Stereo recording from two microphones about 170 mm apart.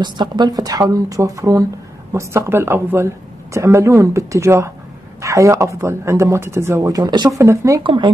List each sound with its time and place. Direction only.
0.0 s speech: 25° right (ahead or behind)